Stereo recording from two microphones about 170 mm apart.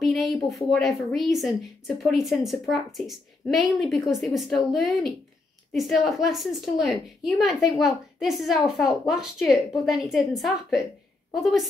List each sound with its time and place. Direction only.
0.0 s a woman's voice: centre (ahead or behind)